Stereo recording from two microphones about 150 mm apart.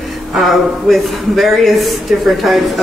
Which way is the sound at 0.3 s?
Centre (ahead or behind).